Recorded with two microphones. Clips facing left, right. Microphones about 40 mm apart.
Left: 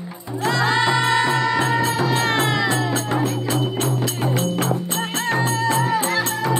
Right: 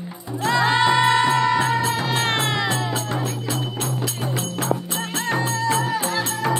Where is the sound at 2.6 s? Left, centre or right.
Left.